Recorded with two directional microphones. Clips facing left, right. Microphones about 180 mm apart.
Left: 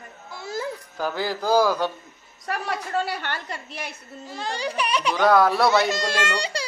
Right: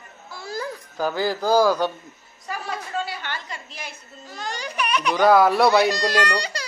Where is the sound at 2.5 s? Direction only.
65° left (ahead or behind).